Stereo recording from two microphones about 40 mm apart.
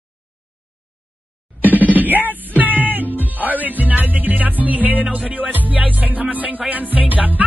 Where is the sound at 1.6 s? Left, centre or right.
Right.